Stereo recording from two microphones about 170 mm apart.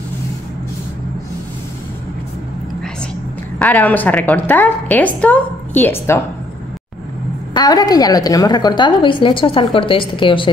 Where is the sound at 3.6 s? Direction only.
10° left (ahead or behind).